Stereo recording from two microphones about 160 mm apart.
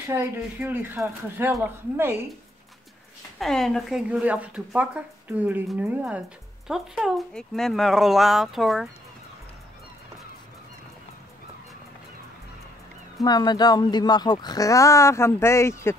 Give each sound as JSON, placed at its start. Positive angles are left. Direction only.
{"t": 0.1, "sound": "speech", "side_deg": -15}
{"t": 3.3, "sound": "speech", "side_deg": 0}
{"t": 13.2, "sound": "speech", "side_deg": 25}